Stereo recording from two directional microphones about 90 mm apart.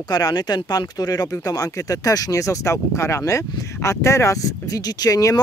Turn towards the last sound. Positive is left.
turn(degrees=40)  # may be behind; listen again after turning